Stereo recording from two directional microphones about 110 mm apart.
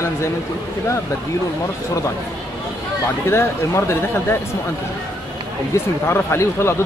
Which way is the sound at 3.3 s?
25° left (ahead or behind).